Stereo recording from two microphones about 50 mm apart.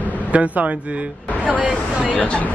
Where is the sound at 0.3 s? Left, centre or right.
Right.